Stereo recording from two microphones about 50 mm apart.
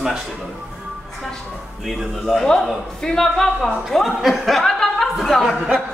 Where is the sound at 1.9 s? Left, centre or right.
Centre.